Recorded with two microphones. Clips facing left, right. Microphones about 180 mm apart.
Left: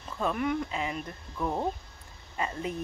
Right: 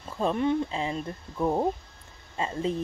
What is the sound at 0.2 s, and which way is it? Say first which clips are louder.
Speech: right 4 dB; 30° right (ahead or behind).